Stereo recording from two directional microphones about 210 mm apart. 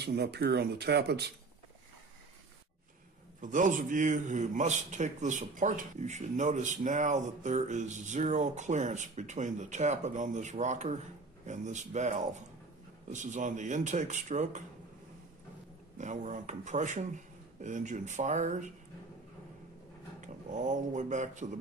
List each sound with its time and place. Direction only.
0.0 s speech: 50° right (ahead or behind)
3.3 s a man's voice: 35° right (ahead or behind)
16.0 s a man's voice: 35° right (ahead or behind)
20.2 s speech: 35° right (ahead or behind)